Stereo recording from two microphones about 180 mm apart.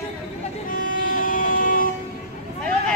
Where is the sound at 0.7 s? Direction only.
50° left (ahead or behind).